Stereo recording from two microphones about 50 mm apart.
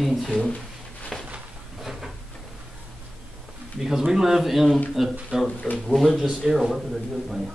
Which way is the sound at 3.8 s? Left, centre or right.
Centre.